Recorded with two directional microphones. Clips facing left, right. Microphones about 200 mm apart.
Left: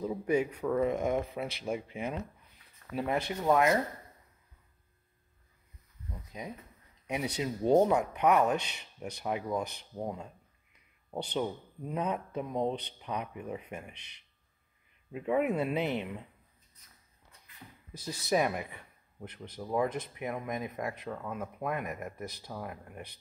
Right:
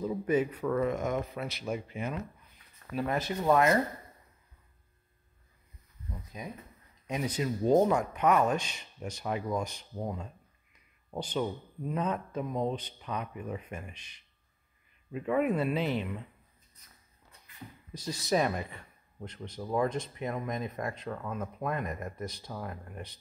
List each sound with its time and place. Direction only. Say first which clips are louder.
0.0 s speech: right 1 dB; 10° left (ahead or behind)
3.4 s speech: right 1 dB; 5° left (ahead or behind)
6.3 s speech: left 1 dB; 20° left (ahead or behind)
8.5 s speech: even; 65° left (ahead or behind)
9.2 s speech: even; 10° left (ahead or behind)
11.9 s speech: right 1 dB; 15° left (ahead or behind)
13.9 s speech: right 1 dB; 65° left (ahead or behind)
15.1 s speech: right 1 dB; 10° left (ahead or behind)
17.9 s speech: right 1 dB; 10° left (ahead or behind)